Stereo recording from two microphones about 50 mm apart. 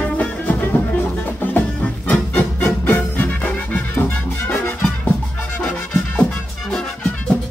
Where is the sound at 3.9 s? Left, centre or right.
Left.